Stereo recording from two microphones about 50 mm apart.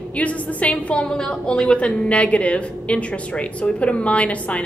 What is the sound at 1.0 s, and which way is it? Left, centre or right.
A woman's voice, centre.